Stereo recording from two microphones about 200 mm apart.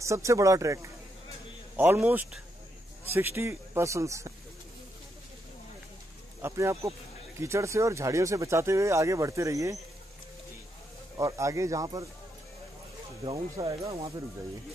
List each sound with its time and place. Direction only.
0.0 s speech: 15° right (ahead or behind)
6.4 s speech: 15° right (ahead or behind)
11.1 s speech: 15° right (ahead or behind)
13.2 s speech: 25° right (ahead or behind)